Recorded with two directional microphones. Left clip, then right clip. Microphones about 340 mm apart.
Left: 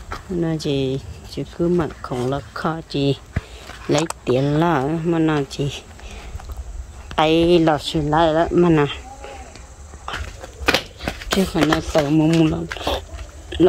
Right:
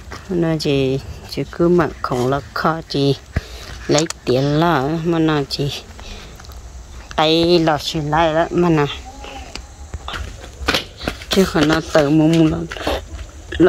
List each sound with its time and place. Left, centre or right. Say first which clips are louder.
0.4 s speech: right 5 dB; centre
3.8 s speech: right 3 dB; left
4.2 s speech: right 2 dB; centre
7.2 s speech: right 1 dB; centre
11.3 s speech: right 5 dB; centre
11.6 s speech: right 2 dB; centre
11.9 s speech: right 3 dB; centre
12.7 s a sound: right 2 dB; centre